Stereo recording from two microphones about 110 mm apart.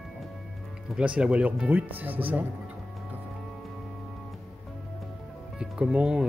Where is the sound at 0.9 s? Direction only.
10° right (ahead or behind).